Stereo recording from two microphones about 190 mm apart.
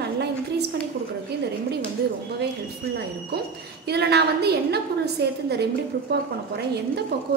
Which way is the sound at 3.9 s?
60° right (ahead or behind).